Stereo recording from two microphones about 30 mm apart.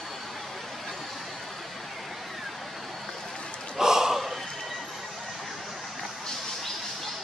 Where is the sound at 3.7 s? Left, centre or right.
Centre.